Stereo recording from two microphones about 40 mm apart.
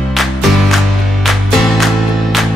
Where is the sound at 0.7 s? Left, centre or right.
Centre.